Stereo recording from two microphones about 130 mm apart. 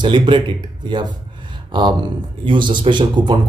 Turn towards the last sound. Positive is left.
turn(degrees=-35)  # may be behind; listen again after turning